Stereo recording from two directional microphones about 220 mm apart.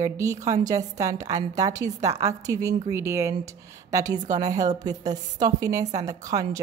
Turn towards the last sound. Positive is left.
turn(degrees=-15)  # may be behind; listen again after turning